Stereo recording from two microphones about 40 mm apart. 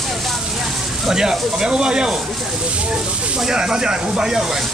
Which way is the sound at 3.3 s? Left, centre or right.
Centre.